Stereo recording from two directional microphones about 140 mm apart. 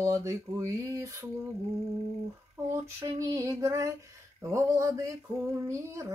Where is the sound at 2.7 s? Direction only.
20° right (ahead or behind).